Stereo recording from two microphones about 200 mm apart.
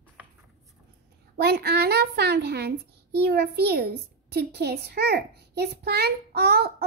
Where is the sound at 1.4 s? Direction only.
55° right (ahead or behind).